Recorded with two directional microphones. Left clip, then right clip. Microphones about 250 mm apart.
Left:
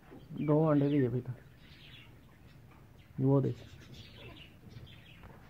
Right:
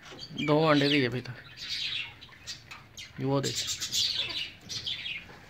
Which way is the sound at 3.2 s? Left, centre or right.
Centre.